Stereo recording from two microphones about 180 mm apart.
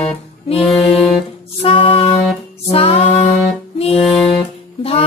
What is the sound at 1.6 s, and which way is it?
Music, 30° left (ahead or behind).